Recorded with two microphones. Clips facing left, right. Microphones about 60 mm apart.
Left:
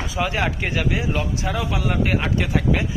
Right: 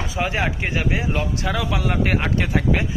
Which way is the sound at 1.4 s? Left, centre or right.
Right.